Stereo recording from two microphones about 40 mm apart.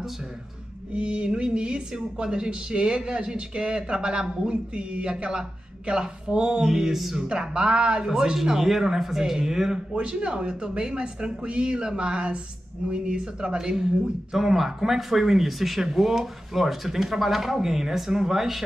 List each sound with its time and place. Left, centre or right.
0.9 s a woman's voice: right
6.6 s speech: centre
7.2 s a woman's voice: right
9.9 s a woman's voice: right; by 18.6 s centre